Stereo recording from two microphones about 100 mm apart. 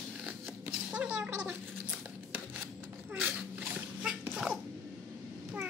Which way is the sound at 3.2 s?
10° right (ahead or behind).